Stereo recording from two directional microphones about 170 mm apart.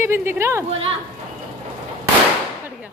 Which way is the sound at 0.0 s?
15° right (ahead or behind).